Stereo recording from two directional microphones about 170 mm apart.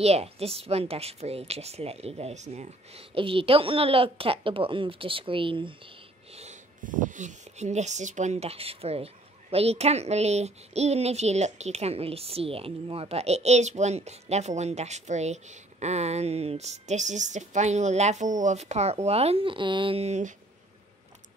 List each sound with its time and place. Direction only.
0.0 s speech: 35° right (ahead or behind)
3.2 s speech: 35° right (ahead or behind)
6.3 s speech: 45° right (ahead or behind)